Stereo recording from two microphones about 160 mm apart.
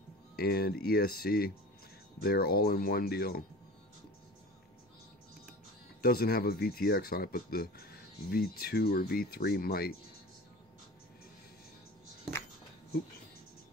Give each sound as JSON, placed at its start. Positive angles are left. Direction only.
{"t": 0.4, "sound": "speech", "side_deg": 75}
{"t": 6.0, "sound": "speech", "side_deg": 75}